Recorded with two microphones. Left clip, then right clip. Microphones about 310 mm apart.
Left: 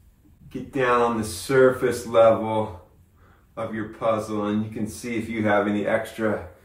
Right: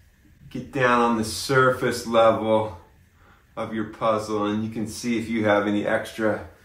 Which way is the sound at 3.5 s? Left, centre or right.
Centre.